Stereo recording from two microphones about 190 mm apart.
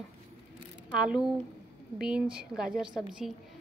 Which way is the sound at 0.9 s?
5° right (ahead or behind).